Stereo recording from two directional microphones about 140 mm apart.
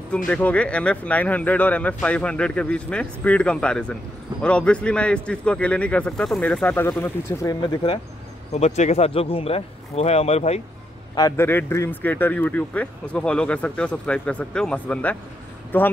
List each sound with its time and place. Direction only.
0.1 s speech: 10° left (ahead or behind)
7.6 s speech: 40° left (ahead or behind)
8.5 s speech: 55° left (ahead or behind)
11.3 s speech: 15° left (ahead or behind)